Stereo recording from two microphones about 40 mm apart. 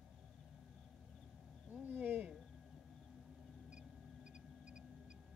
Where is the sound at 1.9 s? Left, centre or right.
Right.